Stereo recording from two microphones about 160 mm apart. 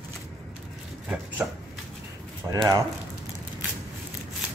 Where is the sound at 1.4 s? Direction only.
5° right (ahead or behind).